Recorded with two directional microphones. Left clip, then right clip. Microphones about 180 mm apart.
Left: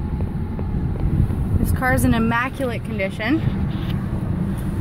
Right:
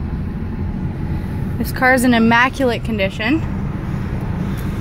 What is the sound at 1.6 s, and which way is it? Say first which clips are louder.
Speech: right 7 dB; 20° right (ahead or behind).